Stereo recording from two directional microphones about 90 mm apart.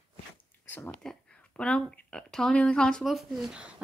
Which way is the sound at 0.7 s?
25° left (ahead or behind).